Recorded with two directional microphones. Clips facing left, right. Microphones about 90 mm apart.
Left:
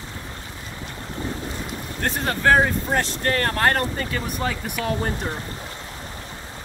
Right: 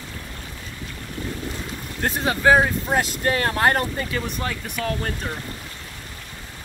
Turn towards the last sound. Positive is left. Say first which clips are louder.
# left 2 dB
turn(degrees=10)  # may be behind; listen again after turning